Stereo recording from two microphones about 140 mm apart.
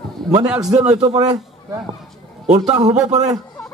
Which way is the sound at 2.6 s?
50° right (ahead or behind).